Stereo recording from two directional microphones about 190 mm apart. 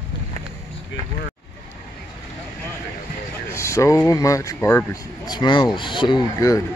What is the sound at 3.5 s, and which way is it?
Speech, 15° left (ahead or behind).